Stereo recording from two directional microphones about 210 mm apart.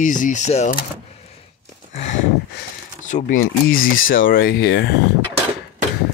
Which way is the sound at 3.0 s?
35° left (ahead or behind).